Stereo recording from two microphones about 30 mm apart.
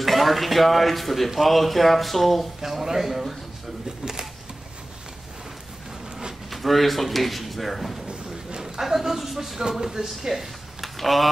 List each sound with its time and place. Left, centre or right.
0.0 s speech: centre
2.6 s speech: centre
4.0 s camera: right
6.5 s speech: centre
8.5 s a sound: centre
8.8 s speech: centre